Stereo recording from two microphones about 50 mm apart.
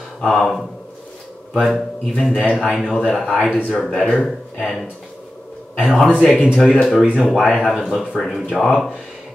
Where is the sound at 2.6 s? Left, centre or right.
Centre.